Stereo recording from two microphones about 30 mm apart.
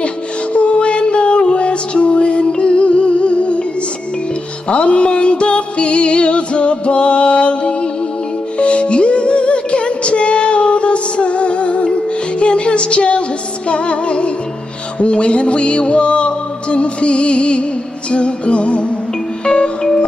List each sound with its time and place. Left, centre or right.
0.0 s music: left
4.6 s music: left